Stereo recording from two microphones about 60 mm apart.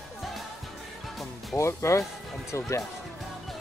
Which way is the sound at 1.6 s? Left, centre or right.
Left.